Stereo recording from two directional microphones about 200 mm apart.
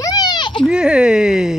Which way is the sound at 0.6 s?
5° right (ahead or behind).